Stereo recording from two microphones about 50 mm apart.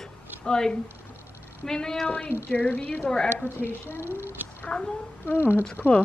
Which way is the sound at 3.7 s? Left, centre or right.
Right.